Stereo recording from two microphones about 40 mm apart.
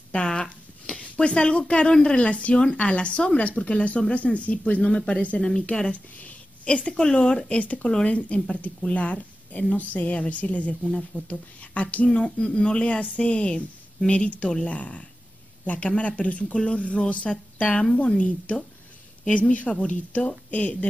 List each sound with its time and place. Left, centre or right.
0.1 s a sound: left
2.0 s a woman's voice: left
6.1 s a sound: left
6.9 s speech: centre
7.4 s a woman's voice: left
19.7 s a woman's voice: centre
20.1 s a woman's voice: left